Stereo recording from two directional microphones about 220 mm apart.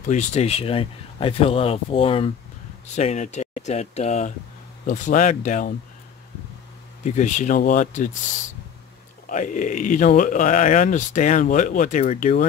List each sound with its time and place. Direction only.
0.0 s speech: 35° left (ahead or behind)
7.1 s speech: 35° left (ahead or behind)
9.3 s speech: 35° left (ahead or behind)